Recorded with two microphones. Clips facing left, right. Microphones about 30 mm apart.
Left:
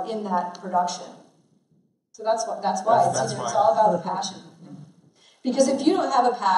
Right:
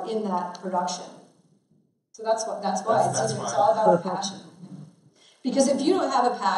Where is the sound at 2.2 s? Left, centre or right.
Centre.